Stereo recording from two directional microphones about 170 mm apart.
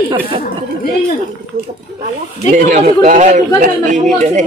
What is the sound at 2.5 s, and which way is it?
Speech, 50° right (ahead or behind).